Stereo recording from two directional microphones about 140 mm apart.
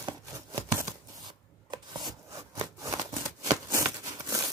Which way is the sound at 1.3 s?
30° right (ahead or behind).